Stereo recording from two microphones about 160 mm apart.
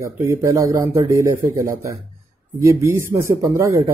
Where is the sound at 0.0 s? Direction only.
15° right (ahead or behind).